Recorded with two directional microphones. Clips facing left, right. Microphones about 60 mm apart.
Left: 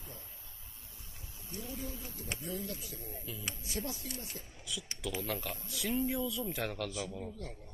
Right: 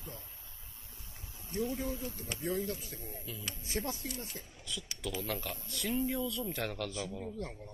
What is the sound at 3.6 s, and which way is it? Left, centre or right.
Speech, right.